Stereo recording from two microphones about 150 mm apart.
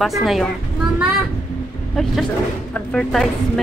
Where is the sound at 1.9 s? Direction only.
Centre (ahead or behind).